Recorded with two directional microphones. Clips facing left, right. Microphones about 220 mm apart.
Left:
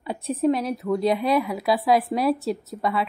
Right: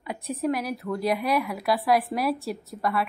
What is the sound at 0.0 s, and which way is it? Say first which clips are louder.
Speech: left 6 dB; 30° left (ahead or behind).